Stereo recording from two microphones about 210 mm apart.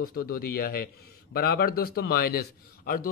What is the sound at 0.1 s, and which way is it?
Speech, 45° left (ahead or behind).